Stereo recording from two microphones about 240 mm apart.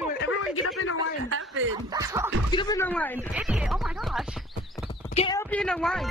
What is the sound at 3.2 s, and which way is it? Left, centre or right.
Speech, centre.